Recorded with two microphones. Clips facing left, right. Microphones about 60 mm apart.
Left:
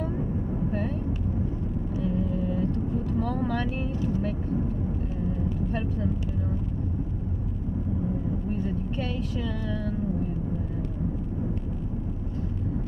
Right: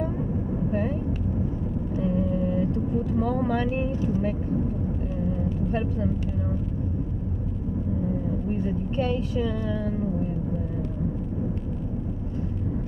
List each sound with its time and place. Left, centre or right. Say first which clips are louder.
2.0 s vehicle: right 3 dB; right
3.2 s speech: right 3 dB; centre
8.9 s speech: right 5 dB; right